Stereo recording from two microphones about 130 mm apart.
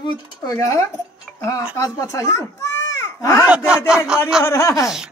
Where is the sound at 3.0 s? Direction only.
25° left (ahead or behind).